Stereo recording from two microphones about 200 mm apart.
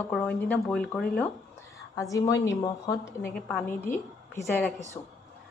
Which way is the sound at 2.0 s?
15° left (ahead or behind).